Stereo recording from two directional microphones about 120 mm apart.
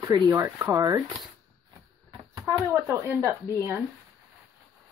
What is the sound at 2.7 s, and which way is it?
Speech, 20° right (ahead or behind).